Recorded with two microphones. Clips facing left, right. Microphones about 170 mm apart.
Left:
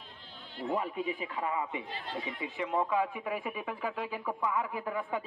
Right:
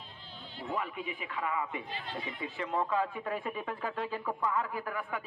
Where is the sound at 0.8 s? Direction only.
35° left (ahead or behind).